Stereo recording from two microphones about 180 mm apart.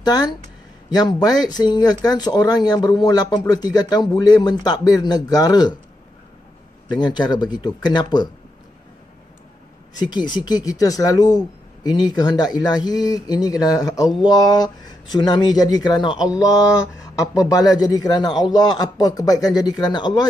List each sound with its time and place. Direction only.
0.0 s speech: 20° left (ahead or behind)
6.9 s speech: 25° left (ahead or behind)
10.0 s speech: 25° left (ahead or behind)